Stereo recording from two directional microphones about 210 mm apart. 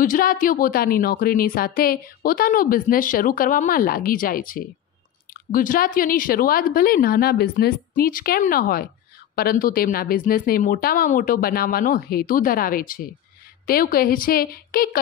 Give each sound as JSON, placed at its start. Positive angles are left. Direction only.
{"t": 0.0, "sound": "a woman's voice", "side_deg": 40}